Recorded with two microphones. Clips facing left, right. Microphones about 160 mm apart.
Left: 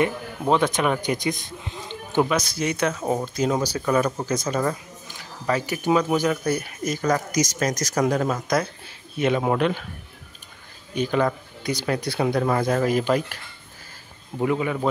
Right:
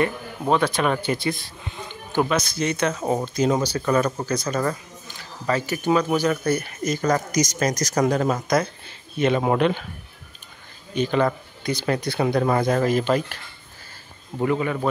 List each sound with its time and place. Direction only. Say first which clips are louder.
0.0 s speech: even; 20° left (ahead or behind)
2.9 s speech: right 1 dB; 5° right (ahead or behind)
4.3 s speech: even; 20° left (ahead or behind); by 9.8 s 5° right (ahead or behind)
11.0 s speech: right 1 dB; 5° left (ahead or behind)
14.4 s speech: even; 10° left (ahead or behind)